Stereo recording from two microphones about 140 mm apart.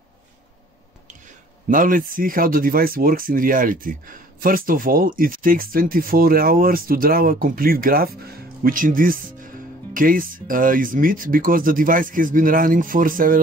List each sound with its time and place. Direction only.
1.7 s speech: 75° right (ahead or behind)